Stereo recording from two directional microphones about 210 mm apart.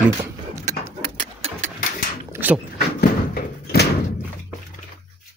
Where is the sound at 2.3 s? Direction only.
10° right (ahead or behind).